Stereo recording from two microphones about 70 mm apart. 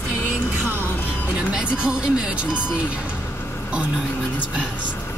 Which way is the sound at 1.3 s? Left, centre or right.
Centre.